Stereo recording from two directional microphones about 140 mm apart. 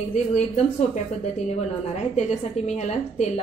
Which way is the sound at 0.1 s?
55° left (ahead or behind).